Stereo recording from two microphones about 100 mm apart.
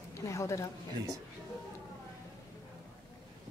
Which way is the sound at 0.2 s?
30° left (ahead or behind).